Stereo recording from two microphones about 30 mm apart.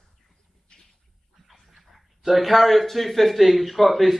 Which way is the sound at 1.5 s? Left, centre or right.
Centre.